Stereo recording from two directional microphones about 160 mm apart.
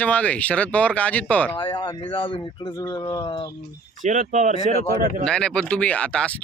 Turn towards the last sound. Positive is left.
turn(degrees=5)  # may be behind; listen again after turning